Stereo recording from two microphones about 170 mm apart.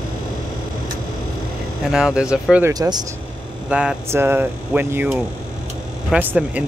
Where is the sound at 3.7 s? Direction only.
5° right (ahead or behind).